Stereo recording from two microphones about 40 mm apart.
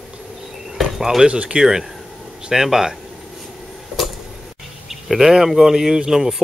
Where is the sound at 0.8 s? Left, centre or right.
Centre.